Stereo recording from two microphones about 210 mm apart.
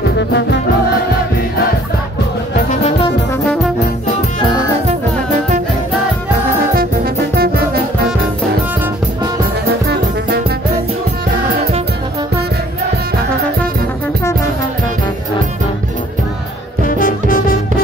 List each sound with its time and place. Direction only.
2.5 s music: 35° left (ahead or behind)
7.3 s music: 45° right (ahead or behind)
16.8 s music: 40° left (ahead or behind)